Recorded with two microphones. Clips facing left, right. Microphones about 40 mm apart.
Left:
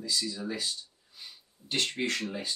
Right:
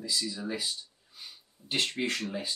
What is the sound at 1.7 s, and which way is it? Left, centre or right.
Speech, centre.